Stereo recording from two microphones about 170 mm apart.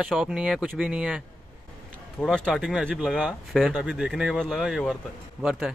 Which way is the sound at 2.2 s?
Centre (ahead or behind).